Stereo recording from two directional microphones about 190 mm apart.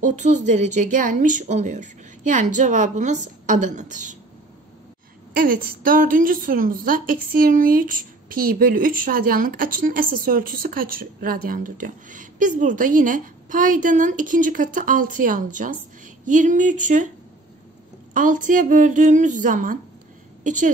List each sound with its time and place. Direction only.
0.0 s a woman's voice: 40° right (ahead or behind)
5.3 s a woman's voice: 45° right (ahead or behind)
18.1 s a woman's voice: 45° right (ahead or behind)